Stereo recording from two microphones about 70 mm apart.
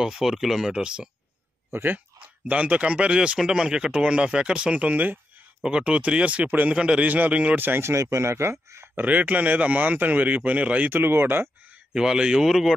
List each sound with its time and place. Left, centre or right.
0.0 s a man's voice: centre
1.7 s speech: right
2.1 s a man's voice: centre
7.6 s speech: right
7.9 s speech: right
8.9 s a man's voice: right
11.9 s a man's voice: centre